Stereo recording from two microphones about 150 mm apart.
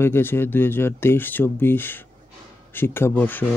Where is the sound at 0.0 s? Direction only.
15° left (ahead or behind).